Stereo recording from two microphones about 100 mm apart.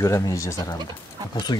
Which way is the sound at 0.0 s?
30° left (ahead or behind).